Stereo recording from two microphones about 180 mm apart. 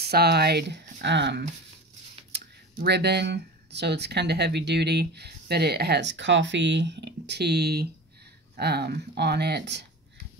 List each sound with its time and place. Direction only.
0.0 s speech: 65° right (ahead or behind)